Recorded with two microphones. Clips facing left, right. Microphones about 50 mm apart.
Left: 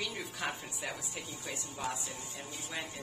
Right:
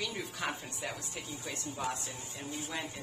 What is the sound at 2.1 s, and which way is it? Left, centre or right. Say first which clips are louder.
Speech: right 2 dB; right.